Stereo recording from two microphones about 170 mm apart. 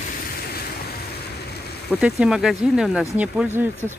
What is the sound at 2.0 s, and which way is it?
Speech, 5° right (ahead or behind).